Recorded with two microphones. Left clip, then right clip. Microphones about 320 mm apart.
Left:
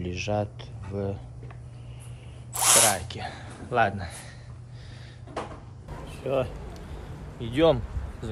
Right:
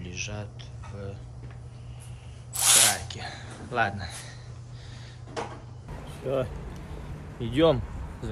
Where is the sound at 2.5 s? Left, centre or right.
Centre.